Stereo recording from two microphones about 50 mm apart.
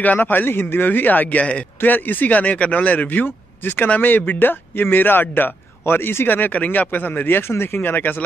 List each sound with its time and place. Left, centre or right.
0.0 s speech: left
1.4 s a man's voice: left
1.8 s speech: left